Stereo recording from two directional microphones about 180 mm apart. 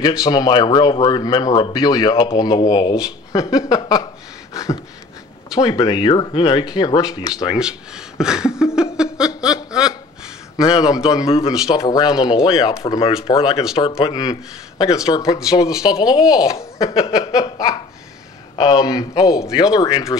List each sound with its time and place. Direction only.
0.0 s speech: 20° left (ahead or behind)
4.6 s a sound: 20° left (ahead or behind)
5.5 s speech: 20° left (ahead or behind)
7.5 s speech: 5° right (ahead or behind)
8.9 s chuckle: 5° right (ahead or behind)
10.6 s speech: 20° left (ahead or behind)